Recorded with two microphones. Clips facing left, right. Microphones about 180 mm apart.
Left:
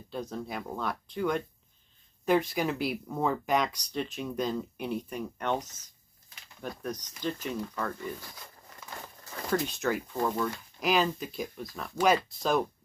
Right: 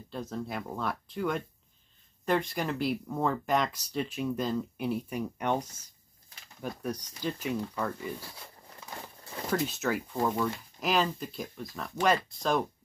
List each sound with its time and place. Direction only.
0.1 s speech: centre (ahead or behind)
8.7 s crumpling: 30° right (ahead or behind)
9.5 s speech: centre (ahead or behind)